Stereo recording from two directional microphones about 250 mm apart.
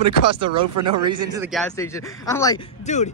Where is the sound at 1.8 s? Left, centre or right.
Centre.